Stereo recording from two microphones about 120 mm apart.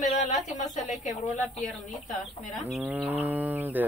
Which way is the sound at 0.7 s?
90° left.